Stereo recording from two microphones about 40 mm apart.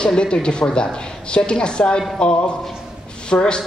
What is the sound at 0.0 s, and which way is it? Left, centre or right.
A woman's voice, left.